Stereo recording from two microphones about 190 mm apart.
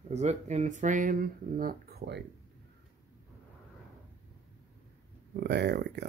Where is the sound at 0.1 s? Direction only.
35° right (ahead or behind); by 2.2 s 60° right (ahead or behind).